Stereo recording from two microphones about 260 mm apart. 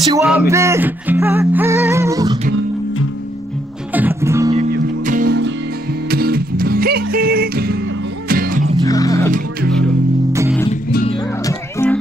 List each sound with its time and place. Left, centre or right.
0.2 s music: centre
3.9 s music: centre
5.0 s music: right
8.8 s music: centre
10.7 s music: left
11.1 s music: centre